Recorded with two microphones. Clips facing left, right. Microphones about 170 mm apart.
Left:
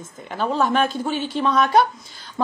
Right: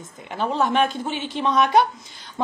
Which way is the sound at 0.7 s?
20° right (ahead or behind).